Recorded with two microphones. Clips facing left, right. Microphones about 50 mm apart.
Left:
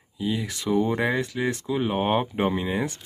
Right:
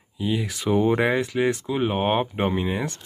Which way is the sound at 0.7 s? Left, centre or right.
Right.